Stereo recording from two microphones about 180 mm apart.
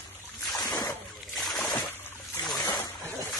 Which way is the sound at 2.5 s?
20° left (ahead or behind).